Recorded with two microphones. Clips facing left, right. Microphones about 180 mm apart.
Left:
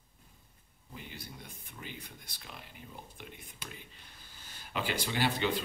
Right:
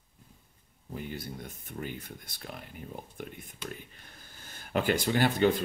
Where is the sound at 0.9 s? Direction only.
50° right (ahead or behind).